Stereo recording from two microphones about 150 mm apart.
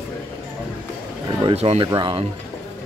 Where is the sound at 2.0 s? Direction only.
30° right (ahead or behind).